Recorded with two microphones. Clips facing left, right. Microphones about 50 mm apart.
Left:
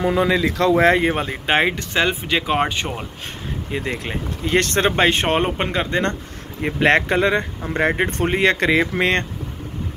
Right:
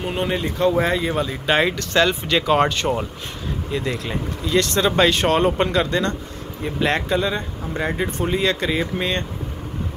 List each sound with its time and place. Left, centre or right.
0.3 s speech: left
0.8 s speech: left
1.8 s speech: centre
3.7 s speech: left
4.5 s speech: left
6.6 s speech: left